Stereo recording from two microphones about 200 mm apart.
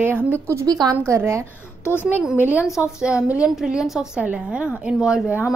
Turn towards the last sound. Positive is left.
turn(degrees=-5)  # may be behind; listen again after turning